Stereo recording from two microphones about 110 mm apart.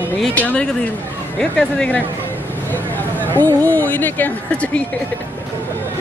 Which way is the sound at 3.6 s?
15° left (ahead or behind).